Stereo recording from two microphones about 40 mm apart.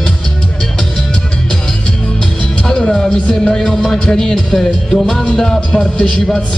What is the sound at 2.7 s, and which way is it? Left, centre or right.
Music, centre.